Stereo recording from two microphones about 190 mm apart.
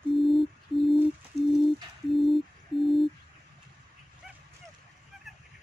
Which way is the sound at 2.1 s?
Centre (ahead or behind).